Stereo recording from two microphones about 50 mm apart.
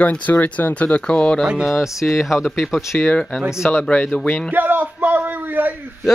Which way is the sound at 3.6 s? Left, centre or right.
Left.